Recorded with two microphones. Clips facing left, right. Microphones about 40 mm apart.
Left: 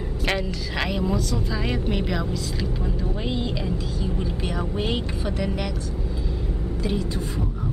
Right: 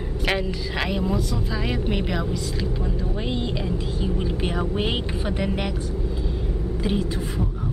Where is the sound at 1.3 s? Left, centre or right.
Centre; by 5.7 s right.